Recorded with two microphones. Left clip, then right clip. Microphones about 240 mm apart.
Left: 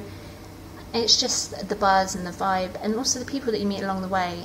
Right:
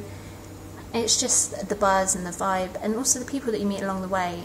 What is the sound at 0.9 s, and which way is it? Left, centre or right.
A woman's voice, centre.